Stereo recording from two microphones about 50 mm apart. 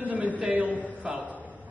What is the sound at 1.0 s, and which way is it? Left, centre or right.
Speech, right.